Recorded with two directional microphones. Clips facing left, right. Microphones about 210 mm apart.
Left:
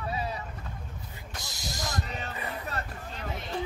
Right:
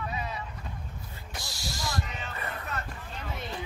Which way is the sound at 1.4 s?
20° left (ahead or behind).